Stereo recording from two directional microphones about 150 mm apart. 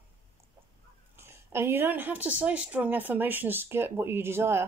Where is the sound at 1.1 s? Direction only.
15° right (ahead or behind).